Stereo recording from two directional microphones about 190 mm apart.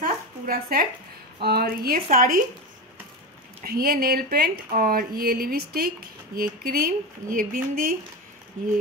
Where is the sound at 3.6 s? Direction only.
50° right (ahead or behind).